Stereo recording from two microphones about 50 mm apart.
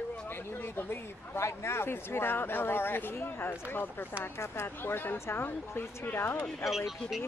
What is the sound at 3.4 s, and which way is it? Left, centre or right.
Speech, left.